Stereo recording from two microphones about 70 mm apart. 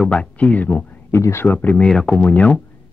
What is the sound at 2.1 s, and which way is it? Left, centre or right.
Speech, left.